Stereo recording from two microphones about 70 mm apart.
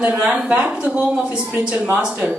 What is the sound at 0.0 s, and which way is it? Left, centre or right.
Speech, centre.